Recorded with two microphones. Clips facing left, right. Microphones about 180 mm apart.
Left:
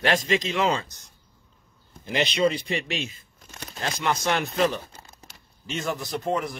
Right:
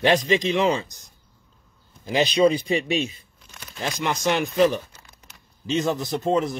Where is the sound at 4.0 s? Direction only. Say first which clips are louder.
Right 2 dB; 15° right (ahead or behind).